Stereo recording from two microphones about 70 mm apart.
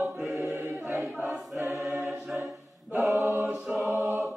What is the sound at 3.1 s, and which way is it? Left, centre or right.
Mantra, right.